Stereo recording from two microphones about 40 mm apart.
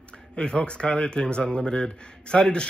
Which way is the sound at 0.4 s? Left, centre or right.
Left.